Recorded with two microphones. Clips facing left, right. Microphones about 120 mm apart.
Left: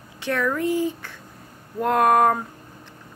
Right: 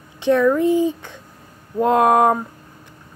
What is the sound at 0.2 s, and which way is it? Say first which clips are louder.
Speech: right 8 dB; 20° right (ahead or behind).